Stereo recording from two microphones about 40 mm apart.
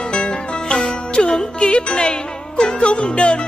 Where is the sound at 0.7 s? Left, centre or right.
Left.